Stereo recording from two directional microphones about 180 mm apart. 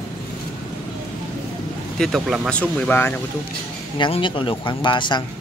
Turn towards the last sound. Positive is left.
turn(degrees=25)  # may be behind; listen again after turning